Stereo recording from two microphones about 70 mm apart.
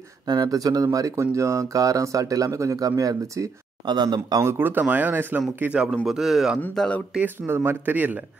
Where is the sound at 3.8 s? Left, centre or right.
Right.